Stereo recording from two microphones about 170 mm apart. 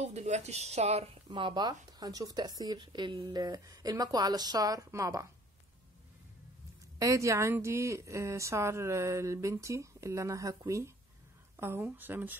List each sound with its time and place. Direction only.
0.0 s a woman's voice: 40° right (ahead or behind); by 5.2 s 20° right (ahead or behind)
7.0 s a woman's voice: 20° right (ahead or behind)